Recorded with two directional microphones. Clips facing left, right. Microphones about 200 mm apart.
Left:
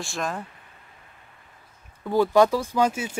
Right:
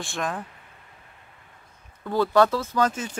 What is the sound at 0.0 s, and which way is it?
Speech, centre (ahead or behind).